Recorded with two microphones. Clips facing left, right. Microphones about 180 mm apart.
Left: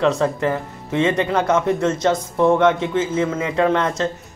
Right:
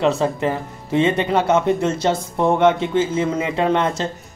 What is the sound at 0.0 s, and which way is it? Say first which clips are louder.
Speech: even; 25° right (ahead or behind).